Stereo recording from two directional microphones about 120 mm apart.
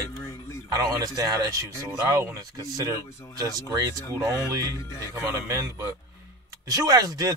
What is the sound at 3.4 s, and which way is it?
Speech, 30° right (ahead or behind).